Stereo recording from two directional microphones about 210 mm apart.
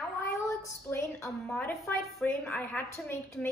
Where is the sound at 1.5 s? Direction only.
15° left (ahead or behind).